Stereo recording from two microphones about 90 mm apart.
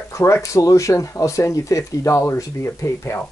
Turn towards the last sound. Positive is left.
turn(degrees=30)  # may be behind; listen again after turning